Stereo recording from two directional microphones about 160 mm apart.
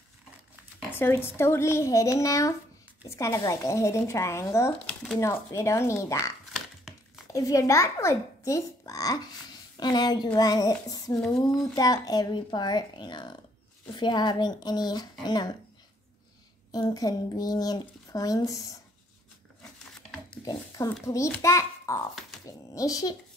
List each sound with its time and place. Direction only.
0.9 s speech: 15° left (ahead or behind)
7.3 s speech: 20° left (ahead or behind)
11.1 s speech: 5° left (ahead or behind)
11.6 s speech: 20° left (ahead or behind)
16.7 s speech: 25° left (ahead or behind)
20.4 s speech: 25° left (ahead or behind)
21.4 s a sound: 20° left (ahead or behind)
22.8 s speech: 20° left (ahead or behind)